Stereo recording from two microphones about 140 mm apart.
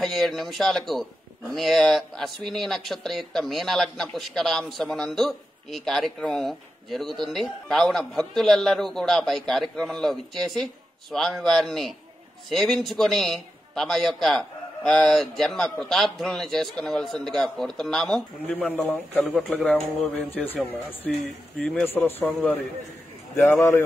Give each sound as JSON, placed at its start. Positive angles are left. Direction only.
{"t": 0.0, "sound": "speech", "side_deg": 0}
{"t": 23.5, "sound": "speech", "side_deg": 20}